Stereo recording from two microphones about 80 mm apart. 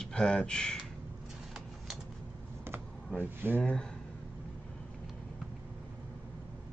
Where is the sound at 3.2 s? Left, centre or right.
Right.